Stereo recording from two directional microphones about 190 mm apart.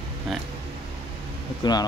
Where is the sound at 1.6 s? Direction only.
20° left (ahead or behind).